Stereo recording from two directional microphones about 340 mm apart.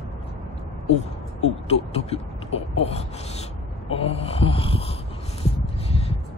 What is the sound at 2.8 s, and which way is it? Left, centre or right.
Speech, centre.